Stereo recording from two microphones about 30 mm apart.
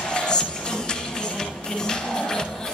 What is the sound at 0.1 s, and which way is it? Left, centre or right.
Music, left.